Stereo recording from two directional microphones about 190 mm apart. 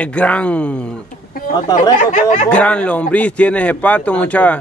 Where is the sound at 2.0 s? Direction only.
40° left (ahead or behind).